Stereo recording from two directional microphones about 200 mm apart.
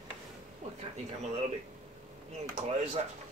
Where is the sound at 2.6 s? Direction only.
35° right (ahead or behind).